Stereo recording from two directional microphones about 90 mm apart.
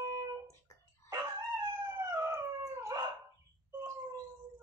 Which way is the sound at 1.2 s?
25° right (ahead or behind).